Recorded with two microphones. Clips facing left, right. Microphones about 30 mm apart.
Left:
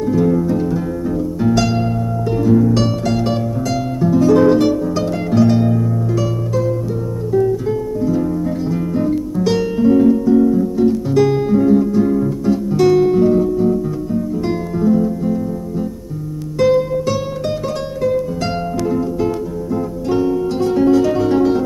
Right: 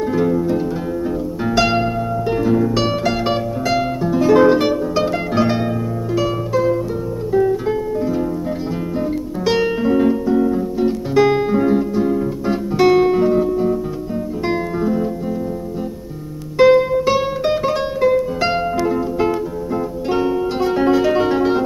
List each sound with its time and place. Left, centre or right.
0.0 s music: right
0.5 s music: centre
12.4 s guitar: right
16.5 s music: right
20.1 s music: right